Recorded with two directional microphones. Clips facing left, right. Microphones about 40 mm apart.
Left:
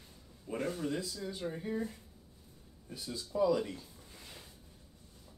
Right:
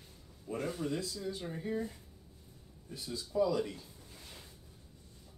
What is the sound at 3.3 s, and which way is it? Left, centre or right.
Speech, centre.